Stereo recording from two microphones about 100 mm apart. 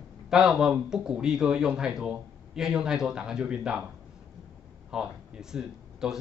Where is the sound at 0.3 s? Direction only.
5° right (ahead or behind).